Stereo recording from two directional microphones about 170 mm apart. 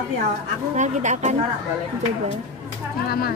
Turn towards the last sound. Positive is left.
turn(degrees=65)  # may be behind; listen again after turning